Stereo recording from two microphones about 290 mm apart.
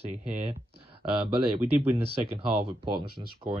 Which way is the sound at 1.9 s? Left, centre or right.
Centre.